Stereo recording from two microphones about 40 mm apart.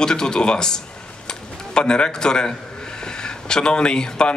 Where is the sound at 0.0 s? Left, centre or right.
Centre.